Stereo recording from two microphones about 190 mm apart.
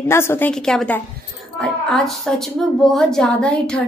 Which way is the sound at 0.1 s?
15° left (ahead or behind).